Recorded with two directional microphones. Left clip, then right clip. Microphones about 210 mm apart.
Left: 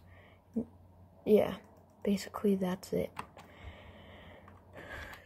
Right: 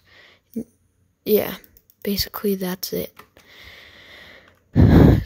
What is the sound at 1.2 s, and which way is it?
Speech, 45° right (ahead or behind).